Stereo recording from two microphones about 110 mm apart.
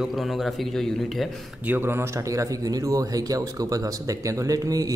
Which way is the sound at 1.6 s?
20° right (ahead or behind).